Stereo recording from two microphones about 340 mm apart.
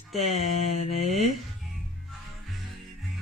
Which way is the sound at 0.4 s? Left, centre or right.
Centre.